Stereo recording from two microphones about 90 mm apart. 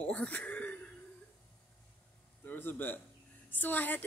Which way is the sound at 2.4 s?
20° left (ahead or behind).